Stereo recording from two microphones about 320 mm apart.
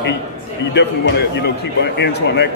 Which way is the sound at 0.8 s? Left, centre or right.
Left.